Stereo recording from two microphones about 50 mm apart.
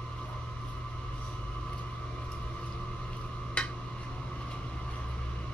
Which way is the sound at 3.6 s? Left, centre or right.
Left.